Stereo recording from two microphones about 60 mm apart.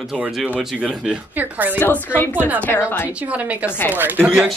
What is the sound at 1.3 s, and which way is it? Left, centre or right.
Speech, right.